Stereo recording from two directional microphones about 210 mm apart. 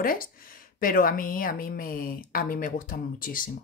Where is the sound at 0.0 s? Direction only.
40° left (ahead or behind).